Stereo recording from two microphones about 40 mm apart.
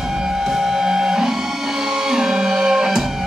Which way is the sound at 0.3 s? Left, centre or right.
Centre.